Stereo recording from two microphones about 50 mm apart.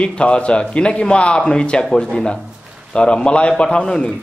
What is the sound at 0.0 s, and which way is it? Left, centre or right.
A man's voice, left.